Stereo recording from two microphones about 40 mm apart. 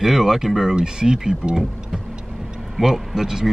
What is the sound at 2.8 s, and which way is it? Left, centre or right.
Speech, centre.